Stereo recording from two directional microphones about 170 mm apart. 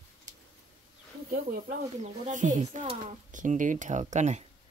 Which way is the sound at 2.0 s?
45° right (ahead or behind).